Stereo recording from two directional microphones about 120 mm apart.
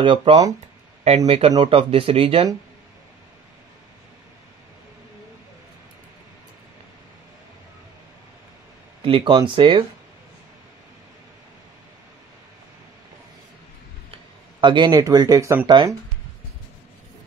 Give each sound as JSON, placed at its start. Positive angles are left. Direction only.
{"t": 0.0, "sound": "speech", "side_deg": -45}
{"t": 1.0, "sound": "speech", "side_deg": -60}
{"t": 9.0, "sound": "speech", "side_deg": -45}
{"t": 14.6, "sound": "speech", "side_deg": -40}
{"t": 15.6, "sound": "speech", "side_deg": -40}